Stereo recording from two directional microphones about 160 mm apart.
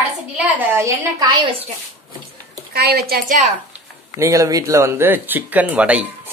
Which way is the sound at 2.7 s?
80° right.